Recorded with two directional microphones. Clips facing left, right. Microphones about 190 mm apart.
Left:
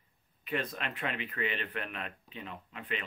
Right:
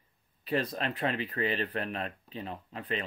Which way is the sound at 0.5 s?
35° right (ahead or behind).